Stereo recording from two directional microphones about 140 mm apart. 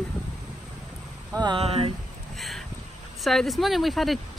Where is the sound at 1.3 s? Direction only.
25° right (ahead or behind).